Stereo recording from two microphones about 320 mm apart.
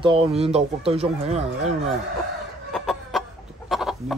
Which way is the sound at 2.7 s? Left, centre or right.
Centre.